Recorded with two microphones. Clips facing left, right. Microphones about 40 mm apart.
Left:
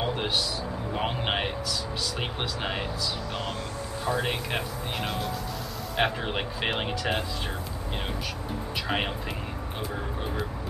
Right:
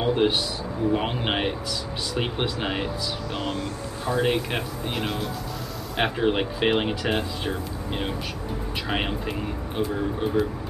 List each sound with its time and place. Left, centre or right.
0.0 s a sound: centre
0.9 s speech: centre
4.0 s speech: centre
8.8 s speech: centre